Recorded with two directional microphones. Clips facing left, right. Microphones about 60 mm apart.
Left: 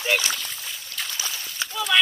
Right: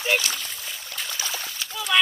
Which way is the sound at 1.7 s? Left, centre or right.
Centre.